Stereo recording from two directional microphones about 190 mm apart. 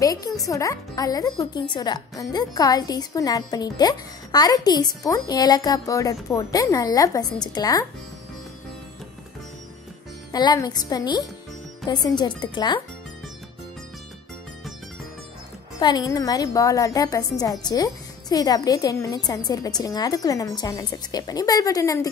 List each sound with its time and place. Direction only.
0.0 s speech: 20° left (ahead or behind)
10.3 s speech: 20° left (ahead or behind)
15.8 s speech: 20° left (ahead or behind)